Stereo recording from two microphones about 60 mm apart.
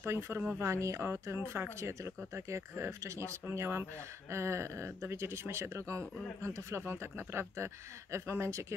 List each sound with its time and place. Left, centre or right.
0.0 s speech: right
1.3 s speech: right